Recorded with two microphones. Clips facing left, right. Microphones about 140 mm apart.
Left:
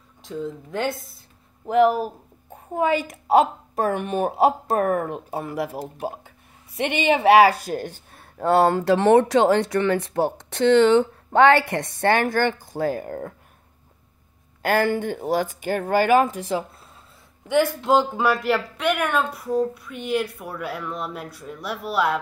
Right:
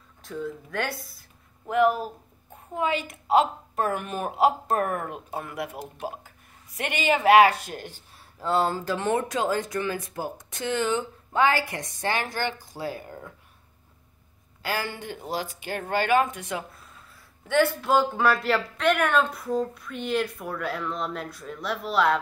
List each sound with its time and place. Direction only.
0.2 s speech: 20° left (ahead or behind)
1.7 s a woman's voice: 35° left (ahead or behind)
14.6 s speech: 55° left (ahead or behind); by 16.9 s 30° left (ahead or behind)
17.5 s speech: 15° left (ahead or behind)